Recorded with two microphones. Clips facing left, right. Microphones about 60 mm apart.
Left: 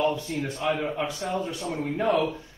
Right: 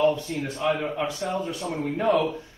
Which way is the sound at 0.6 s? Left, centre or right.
Centre.